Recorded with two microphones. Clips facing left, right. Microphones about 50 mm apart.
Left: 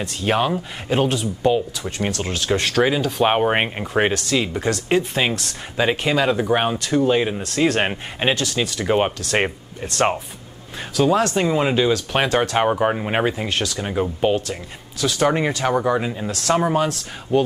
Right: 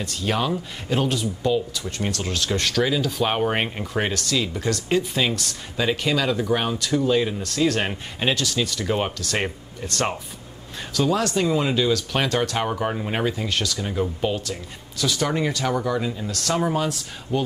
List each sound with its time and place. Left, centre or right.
0.2 s speech: left
1.8 s speech: centre
2.7 s speech: left
11.5 s speech: left
16.3 s speech: centre